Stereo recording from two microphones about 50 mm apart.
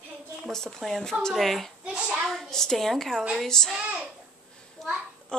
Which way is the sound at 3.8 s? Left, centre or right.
Right.